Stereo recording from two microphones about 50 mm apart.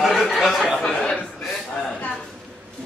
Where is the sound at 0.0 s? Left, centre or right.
Centre.